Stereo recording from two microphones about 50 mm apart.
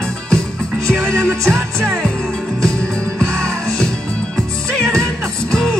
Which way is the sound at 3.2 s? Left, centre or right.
Centre.